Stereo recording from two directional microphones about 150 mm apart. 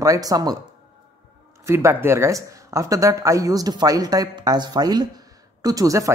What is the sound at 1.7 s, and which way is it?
Speech, 20° right (ahead or behind).